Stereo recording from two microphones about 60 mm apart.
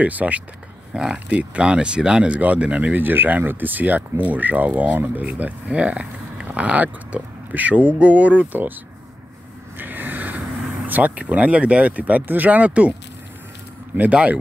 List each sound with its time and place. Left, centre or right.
0.0 s speech: right
0.9 s speech: centre; by 8.7 s right
9.8 s vehicle: right
10.9 s speech: right
13.9 s speech: right